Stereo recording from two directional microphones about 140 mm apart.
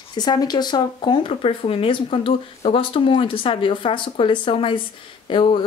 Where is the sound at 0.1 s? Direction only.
30° left (ahead or behind).